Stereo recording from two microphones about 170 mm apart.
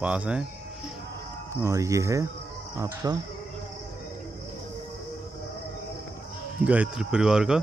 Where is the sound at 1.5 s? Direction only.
20° right (ahead or behind).